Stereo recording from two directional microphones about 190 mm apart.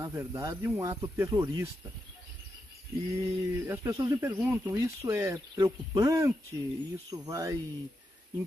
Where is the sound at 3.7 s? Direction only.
15° right (ahead or behind).